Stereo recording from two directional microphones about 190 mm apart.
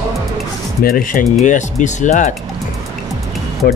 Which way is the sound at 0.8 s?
50° left (ahead or behind).